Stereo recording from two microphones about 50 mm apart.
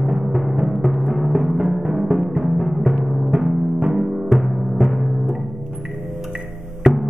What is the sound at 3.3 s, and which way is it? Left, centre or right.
Timpani, centre.